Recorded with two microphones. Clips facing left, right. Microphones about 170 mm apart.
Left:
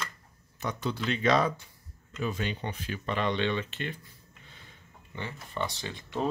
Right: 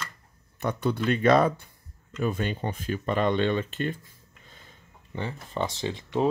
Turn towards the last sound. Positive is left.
turn(degrees=-25)  # may be behind; listen again after turning